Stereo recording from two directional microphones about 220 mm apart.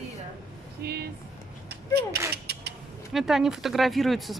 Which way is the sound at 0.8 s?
45° right (ahead or behind).